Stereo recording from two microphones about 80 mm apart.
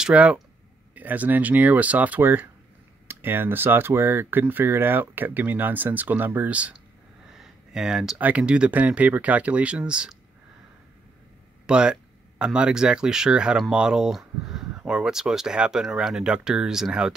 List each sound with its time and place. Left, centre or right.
0.0 s speech: centre
7.3 s a sound: centre
8.2 s speech: centre
11.6 s speech: centre